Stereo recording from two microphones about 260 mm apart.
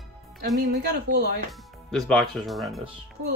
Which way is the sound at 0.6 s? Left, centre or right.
Right.